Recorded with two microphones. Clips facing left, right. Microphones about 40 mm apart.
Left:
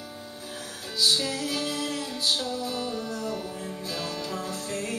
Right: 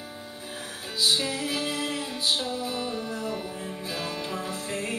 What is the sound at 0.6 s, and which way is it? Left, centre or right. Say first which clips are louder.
Music: even; right.